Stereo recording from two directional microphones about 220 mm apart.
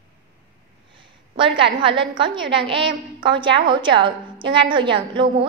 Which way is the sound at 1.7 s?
20° right (ahead or behind).